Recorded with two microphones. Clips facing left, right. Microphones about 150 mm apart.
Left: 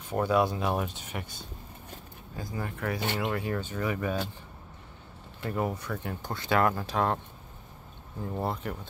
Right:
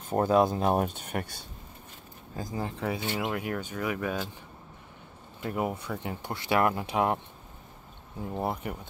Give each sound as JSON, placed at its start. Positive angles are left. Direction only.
{"t": 0.1, "sound": "speech", "side_deg": -40}
{"t": 2.5, "sound": "speech", "side_deg": -25}
{"t": 3.2, "sound": "speech", "side_deg": -5}
{"t": 5.5, "sound": "speech", "side_deg": -15}
{"t": 8.4, "sound": "speech", "side_deg": -10}